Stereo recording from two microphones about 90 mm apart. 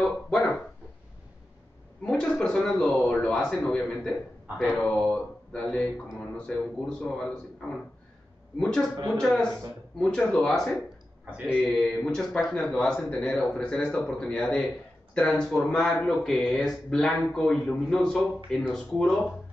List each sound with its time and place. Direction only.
0.0 s speech: 5° left (ahead or behind)
2.0 s a man's voice: 5° left (ahead or behind)
8.5 s a man's voice: 10° left (ahead or behind)
11.2 s speech: 15° right (ahead or behind)
11.6 s a man's voice: 10° left (ahead or behind)